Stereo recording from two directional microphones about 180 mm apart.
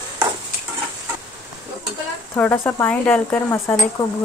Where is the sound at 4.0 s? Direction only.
20° left (ahead or behind).